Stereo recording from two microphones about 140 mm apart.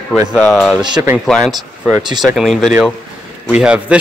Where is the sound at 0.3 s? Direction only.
Centre (ahead or behind).